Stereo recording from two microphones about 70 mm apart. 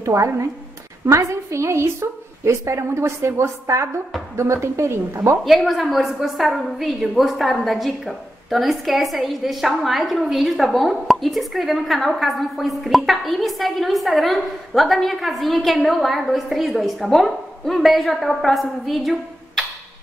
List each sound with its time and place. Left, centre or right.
0.0 s a woman's voice: right
5.4 s a woman's voice: centre